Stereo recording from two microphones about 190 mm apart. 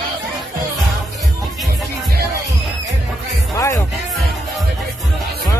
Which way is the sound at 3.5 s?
15° left (ahead or behind).